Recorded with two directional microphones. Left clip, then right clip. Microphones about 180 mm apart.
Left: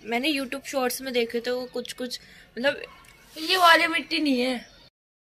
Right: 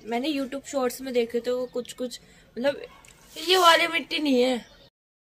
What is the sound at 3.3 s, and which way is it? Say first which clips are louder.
A woman's voice: even; 90° right.